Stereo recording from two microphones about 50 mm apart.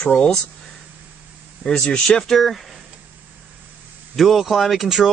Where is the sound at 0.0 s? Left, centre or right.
Centre.